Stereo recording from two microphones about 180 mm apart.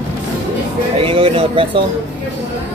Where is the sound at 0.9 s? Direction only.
30° right (ahead or behind).